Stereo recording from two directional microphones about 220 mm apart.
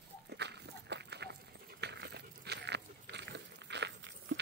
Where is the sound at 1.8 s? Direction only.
50° right (ahead or behind).